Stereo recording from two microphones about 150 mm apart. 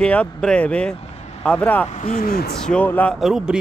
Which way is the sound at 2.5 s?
5° left (ahead or behind).